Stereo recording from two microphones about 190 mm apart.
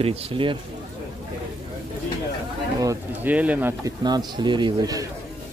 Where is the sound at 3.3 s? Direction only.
10° right (ahead or behind).